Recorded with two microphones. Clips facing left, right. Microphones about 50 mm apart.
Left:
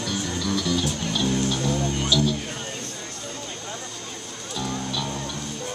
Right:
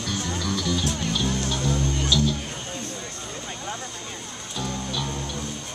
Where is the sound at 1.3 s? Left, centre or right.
Centre.